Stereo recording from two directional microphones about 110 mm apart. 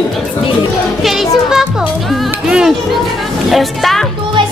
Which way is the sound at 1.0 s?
5° right (ahead or behind).